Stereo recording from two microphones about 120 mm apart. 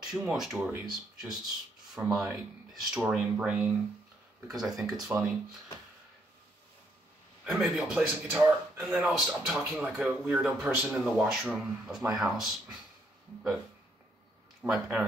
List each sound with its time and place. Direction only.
0.2 s speech: 10° right (ahead or behind)
7.4 s speech: 5° right (ahead or behind)
14.6 s speech: 10° right (ahead or behind)